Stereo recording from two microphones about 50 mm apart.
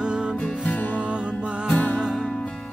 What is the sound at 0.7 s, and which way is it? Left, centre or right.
Music, left.